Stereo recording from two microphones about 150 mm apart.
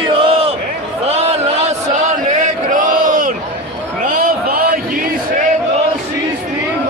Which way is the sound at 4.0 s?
80° right.